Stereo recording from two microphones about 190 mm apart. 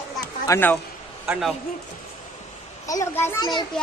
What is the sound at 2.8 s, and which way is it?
Speech, 15° left (ahead or behind).